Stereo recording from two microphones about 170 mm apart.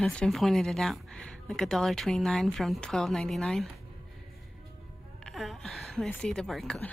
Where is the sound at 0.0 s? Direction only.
5° left (ahead or behind).